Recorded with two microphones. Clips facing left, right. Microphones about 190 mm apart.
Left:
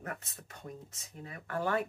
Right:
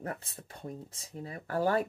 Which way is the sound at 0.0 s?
30° right (ahead or behind).